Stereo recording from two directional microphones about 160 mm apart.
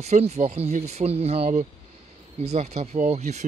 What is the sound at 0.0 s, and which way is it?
Speech, 45° right (ahead or behind).